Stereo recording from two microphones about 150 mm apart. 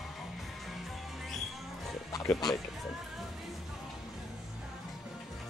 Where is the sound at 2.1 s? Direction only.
25° left (ahead or behind).